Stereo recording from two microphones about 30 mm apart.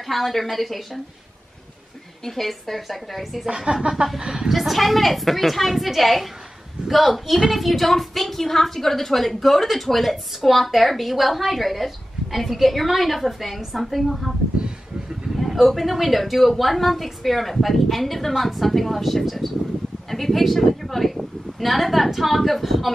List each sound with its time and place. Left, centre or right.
0.0 s a woman's voice: centre
2.2 s a woman's voice: centre
3.7 s a sound: right
4.2 s a woman's voice: right
4.5 s a woman's voice: centre
15.3 s a woman's voice: centre